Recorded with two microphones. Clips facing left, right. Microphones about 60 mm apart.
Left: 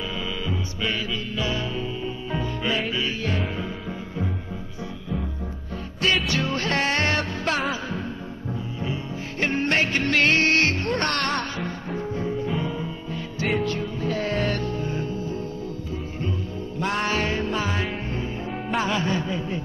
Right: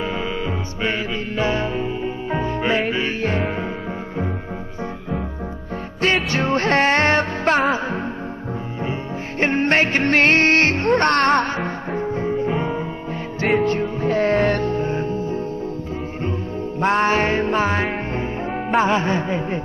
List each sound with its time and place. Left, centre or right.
0.5 s music: right
6.3 s music: right
9.4 s music: right
16.8 s music: right
18.8 s a sound: right